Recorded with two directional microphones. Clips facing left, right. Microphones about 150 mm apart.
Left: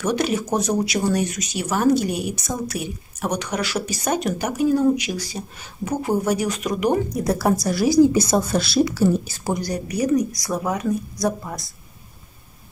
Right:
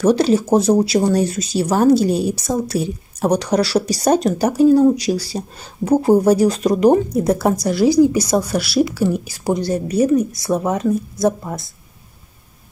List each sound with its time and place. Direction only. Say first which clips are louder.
0.0 s speech: right 8 dB; 30° right (ahead or behind)
7.2 s a woman's voice: right 3 dB; 20° right (ahead or behind)